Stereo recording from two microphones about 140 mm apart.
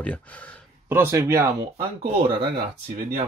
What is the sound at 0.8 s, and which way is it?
Speech, 15° right (ahead or behind).